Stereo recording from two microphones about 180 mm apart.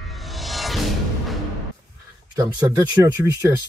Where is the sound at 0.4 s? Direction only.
Centre (ahead or behind).